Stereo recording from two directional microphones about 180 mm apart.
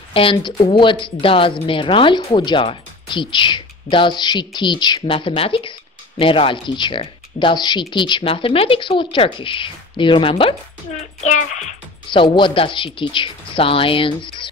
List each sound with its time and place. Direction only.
0.1 s speech: 30° left (ahead or behind)
11.0 s a child's voice: 40° left (ahead or behind)
12.1 s speech: 25° left (ahead or behind)